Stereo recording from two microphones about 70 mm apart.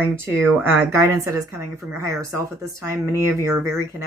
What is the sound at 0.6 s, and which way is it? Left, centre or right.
Speech, right.